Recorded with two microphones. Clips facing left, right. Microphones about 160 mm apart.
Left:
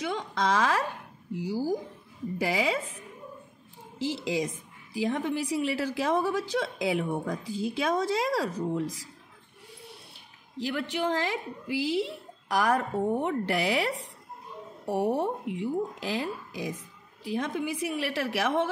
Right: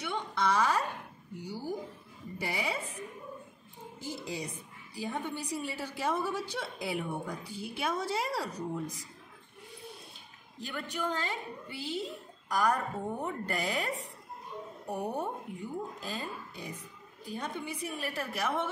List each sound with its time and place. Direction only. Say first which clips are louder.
0.0 s a sound: left 3 dB; 90° left
1.3 s a woman's voice: left 8 dB; 90° left
4.0 s a woman's voice: left 9 dB; 90° left
10.6 s a woman's voice: left 7 dB; 85° left